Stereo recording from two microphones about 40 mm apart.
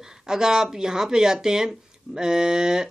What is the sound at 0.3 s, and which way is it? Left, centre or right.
Speech, centre.